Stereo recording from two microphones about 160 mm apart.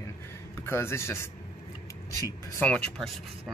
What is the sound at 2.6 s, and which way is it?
Speech, 5° left (ahead or behind).